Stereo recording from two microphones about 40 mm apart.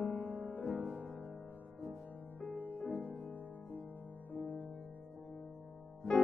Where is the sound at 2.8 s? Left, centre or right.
Left.